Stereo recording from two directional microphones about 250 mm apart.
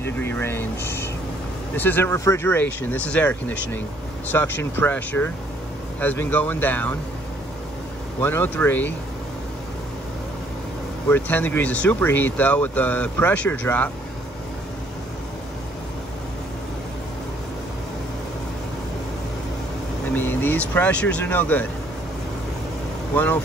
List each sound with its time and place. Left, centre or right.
0.0 s speech: centre
8.2 s speech: centre
11.1 s speech: centre
20.1 s speech: centre
23.1 s speech: centre